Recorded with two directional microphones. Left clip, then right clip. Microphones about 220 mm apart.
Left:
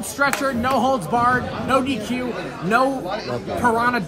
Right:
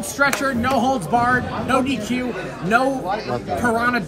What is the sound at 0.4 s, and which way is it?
Speech, 15° left (ahead or behind).